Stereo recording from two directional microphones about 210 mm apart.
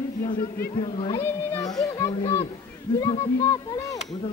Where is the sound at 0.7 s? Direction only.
25° left (ahead or behind).